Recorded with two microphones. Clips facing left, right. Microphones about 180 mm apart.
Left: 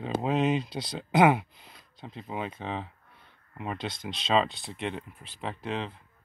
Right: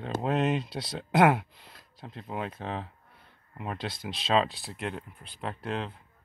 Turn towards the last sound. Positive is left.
turn(degrees=0)  # may be behind; listen again after turning